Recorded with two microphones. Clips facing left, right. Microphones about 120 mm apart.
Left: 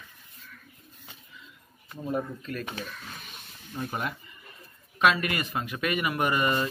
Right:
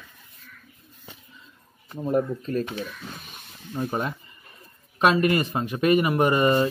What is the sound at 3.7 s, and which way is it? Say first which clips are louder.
Speech: right 5 dB; 30° right (ahead or behind).